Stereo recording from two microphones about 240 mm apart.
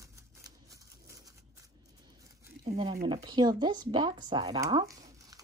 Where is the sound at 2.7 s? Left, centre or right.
Centre.